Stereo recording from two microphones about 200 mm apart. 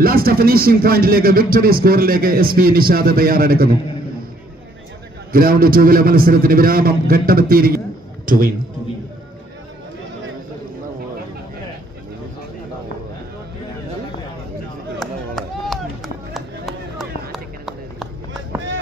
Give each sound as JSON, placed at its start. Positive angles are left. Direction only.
{"t": 0.0, "sound": "speech", "side_deg": -50}
{"t": 5.3, "sound": "speech", "side_deg": -45}
{"t": 15.0, "sound": "chop", "side_deg": 0}